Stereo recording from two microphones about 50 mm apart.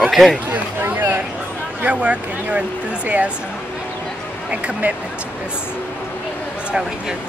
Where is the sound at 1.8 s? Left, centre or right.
Right.